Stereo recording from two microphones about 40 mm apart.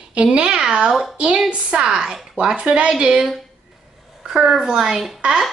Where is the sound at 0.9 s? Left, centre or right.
Centre.